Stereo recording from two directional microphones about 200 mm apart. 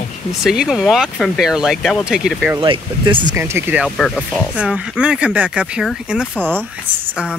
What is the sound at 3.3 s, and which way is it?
Speech, 10° right (ahead or behind).